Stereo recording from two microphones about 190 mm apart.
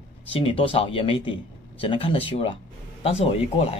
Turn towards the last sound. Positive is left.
turn(degrees=30)  # may be behind; listen again after turning